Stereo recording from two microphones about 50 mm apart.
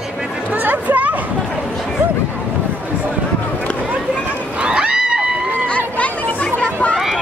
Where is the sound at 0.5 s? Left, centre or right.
Right.